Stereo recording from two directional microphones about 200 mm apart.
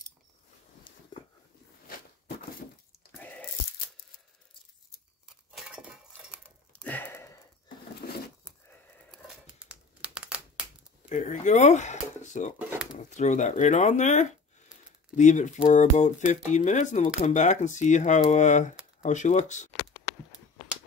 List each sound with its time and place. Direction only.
0.9 s a sound: 25° left (ahead or behind)
3.1 s a sound: 5° left (ahead or behind)
5.5 s chink: centre (ahead or behind)
6.7 s sniff: 10° left (ahead or behind)
9.1 s crumpling: 5° right (ahead or behind)
11.1 s speech: 35° left (ahead or behind)
12.5 s speech: 5° right (ahead or behind)
12.9 s speech: 35° left (ahead or behind)